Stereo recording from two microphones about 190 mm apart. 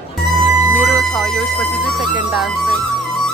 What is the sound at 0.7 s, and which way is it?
Speech, 5° left (ahead or behind).